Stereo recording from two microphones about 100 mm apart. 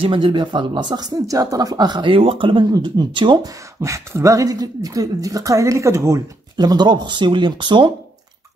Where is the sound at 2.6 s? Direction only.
40° right (ahead or behind).